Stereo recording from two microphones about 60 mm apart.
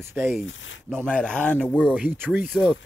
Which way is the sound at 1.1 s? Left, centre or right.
Centre.